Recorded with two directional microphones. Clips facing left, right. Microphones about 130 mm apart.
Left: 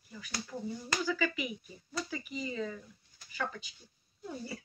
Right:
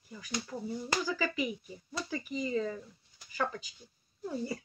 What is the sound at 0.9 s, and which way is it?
Speech, 35° right (ahead or behind).